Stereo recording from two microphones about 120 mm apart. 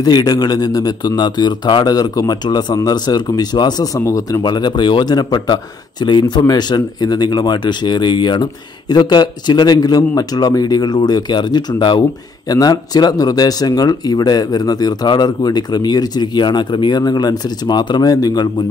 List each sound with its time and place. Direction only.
0.0 s speech: 35° left (ahead or behind)